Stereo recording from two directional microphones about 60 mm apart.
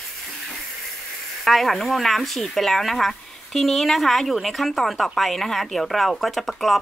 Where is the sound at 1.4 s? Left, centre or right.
Centre.